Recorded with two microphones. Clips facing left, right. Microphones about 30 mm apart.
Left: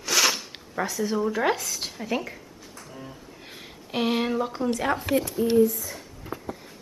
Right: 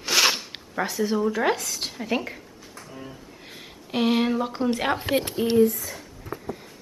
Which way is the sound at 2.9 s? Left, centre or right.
Centre.